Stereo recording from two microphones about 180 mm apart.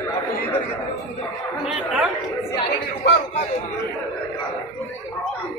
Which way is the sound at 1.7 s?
10° right (ahead or behind).